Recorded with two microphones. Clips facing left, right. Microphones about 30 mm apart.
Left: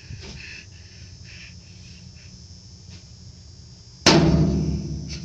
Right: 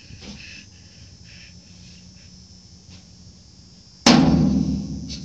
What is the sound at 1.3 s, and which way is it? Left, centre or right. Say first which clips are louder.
Vehicle: left 2 dB; left.